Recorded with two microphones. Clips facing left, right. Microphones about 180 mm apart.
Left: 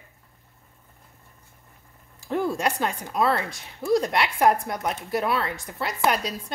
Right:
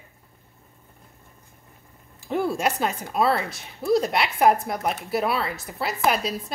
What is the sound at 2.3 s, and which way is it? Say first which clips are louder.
A woman's voice: right 1 dB; 10° right (ahead or behind).